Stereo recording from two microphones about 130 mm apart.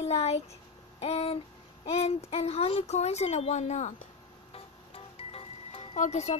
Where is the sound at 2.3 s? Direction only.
50° left (ahead or behind).